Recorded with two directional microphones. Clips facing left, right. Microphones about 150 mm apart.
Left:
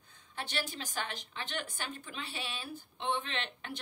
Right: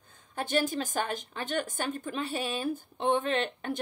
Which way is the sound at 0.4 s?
45° right (ahead or behind).